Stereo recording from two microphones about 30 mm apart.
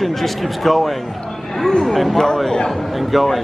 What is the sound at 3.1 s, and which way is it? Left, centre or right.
Speech, centre.